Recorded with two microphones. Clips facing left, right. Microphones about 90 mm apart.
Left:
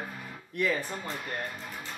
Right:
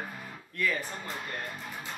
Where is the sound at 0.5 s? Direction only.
20° left (ahead or behind).